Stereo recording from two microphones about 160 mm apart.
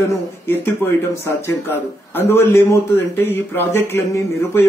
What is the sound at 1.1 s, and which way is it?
A man's voice, 15° left (ahead or behind).